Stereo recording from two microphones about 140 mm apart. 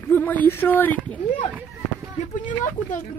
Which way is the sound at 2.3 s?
65° left (ahead or behind).